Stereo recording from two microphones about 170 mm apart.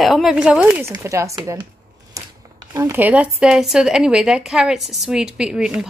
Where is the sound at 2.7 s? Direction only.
15° right (ahead or behind).